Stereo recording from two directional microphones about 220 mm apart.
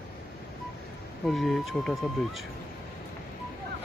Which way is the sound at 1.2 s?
Centre (ahead or behind).